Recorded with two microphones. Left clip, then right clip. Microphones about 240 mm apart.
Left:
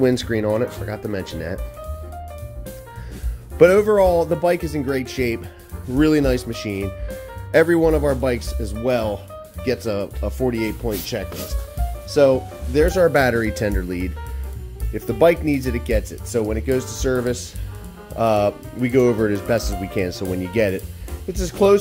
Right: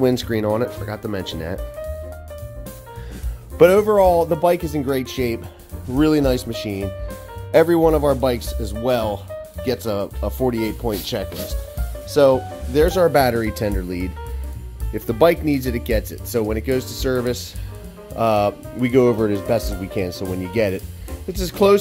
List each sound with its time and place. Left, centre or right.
0.0 s speech: centre
3.5 s speech: centre
19.1 s speech: centre